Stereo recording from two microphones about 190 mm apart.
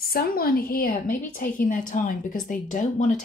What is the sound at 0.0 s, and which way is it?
A woman's voice, 50° left (ahead or behind).